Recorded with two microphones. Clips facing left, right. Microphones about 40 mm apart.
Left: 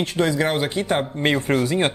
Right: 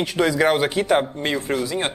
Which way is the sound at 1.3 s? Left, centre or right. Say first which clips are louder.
Left 3 dB; left.